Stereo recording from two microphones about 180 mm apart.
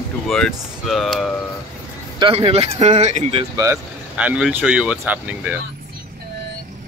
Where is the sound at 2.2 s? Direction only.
30° right (ahead or behind).